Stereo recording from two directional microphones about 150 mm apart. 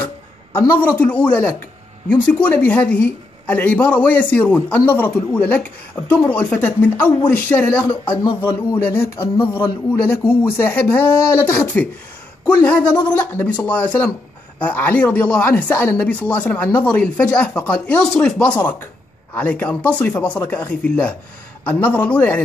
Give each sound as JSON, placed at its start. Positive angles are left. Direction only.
{"t": 0.6, "sound": "speech", "side_deg": 15}